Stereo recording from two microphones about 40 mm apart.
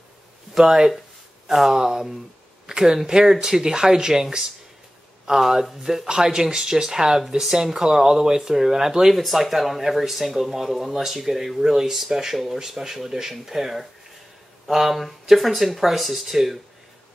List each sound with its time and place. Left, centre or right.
0.6 s speech: centre